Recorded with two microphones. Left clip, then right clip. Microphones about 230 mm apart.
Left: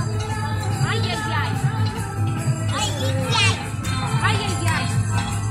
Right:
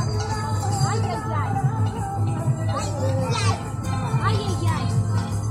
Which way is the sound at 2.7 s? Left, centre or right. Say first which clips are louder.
Left 3 dB; left.